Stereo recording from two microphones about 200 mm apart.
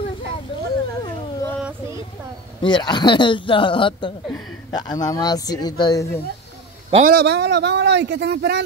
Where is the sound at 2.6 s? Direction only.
20° left (ahead or behind).